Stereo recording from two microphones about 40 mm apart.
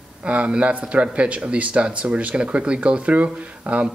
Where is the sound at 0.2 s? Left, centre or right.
Right.